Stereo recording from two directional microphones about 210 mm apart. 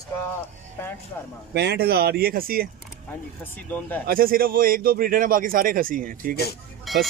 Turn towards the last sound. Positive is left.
turn(degrees=0)  # may be behind; listen again after turning